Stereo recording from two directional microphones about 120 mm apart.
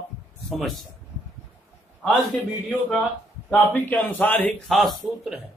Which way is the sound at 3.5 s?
15° left (ahead or behind).